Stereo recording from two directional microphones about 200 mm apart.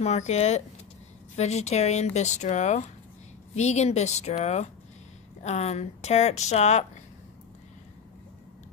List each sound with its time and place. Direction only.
0.0 s speech: 35° left (ahead or behind)